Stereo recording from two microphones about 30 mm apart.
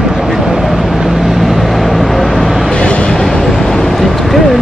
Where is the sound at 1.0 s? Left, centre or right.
Centre.